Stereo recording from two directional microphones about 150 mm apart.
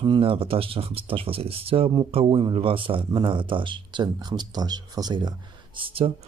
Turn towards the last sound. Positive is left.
turn(degrees=-40)  # may be behind; listen again after turning